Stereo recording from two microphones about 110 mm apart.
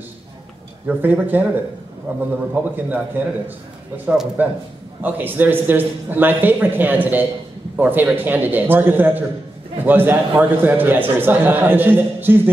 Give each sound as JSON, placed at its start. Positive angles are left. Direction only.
{"t": 0.8, "sound": "a man's voice", "side_deg": -15}